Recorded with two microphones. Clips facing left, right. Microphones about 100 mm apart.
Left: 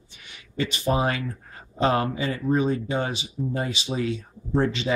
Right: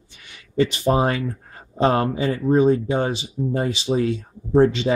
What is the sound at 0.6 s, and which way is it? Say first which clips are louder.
Speech: right 6 dB; 35° right (ahead or behind).